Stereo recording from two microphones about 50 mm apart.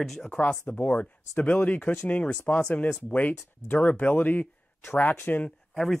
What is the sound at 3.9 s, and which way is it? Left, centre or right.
Speech, left.